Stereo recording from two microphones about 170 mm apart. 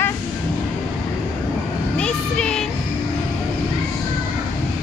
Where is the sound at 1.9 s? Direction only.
5° left (ahead or behind).